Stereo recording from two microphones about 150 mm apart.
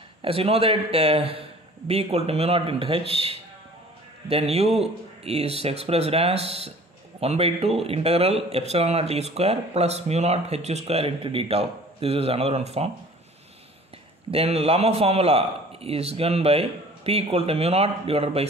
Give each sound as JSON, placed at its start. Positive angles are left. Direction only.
{"t": 0.2, "sound": "a man's voice", "side_deg": -40}
{"t": 14.3, "sound": "a man's voice", "side_deg": -40}